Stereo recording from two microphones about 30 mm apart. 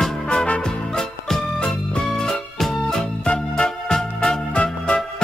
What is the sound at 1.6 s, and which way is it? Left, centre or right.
Music, left.